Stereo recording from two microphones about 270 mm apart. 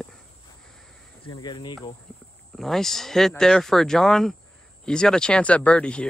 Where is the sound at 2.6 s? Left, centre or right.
Centre.